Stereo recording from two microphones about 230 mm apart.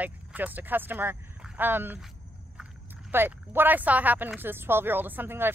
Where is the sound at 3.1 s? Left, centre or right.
Centre.